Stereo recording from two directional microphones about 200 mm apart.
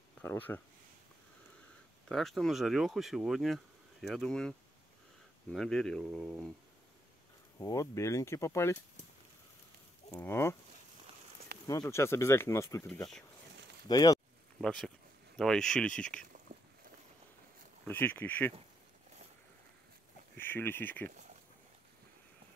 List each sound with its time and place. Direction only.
0.2 s speech: 10° left (ahead or behind)
2.0 s speech: centre (ahead or behind)
7.5 s speech: 15° left (ahead or behind)
10.1 s speech: 10° left (ahead or behind)
11.6 s speech: 15° left (ahead or behind)
14.6 s speech: 5° left (ahead or behind)
16.5 s a sound: 45° right (ahead or behind)
17.8 s speech: 10° left (ahead or behind)
20.3 s speech: 10° left (ahead or behind)